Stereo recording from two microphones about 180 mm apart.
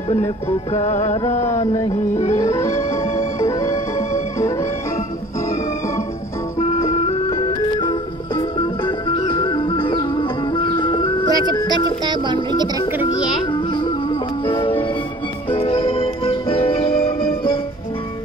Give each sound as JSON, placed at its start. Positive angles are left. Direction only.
{"t": 0.8, "sound": "music", "side_deg": 40}
{"t": 1.5, "sound": "music", "side_deg": 15}
{"t": 6.6, "sound": "music", "side_deg": 40}
{"t": 7.2, "sound": "music", "side_deg": 25}
{"t": 12.1, "sound": "speech", "side_deg": -25}
{"t": 13.5, "sound": "music", "side_deg": 25}